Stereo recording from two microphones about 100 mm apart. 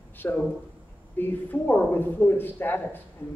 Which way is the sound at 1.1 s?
20° left (ahead or behind).